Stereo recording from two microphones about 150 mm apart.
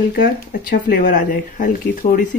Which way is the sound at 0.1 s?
80° left.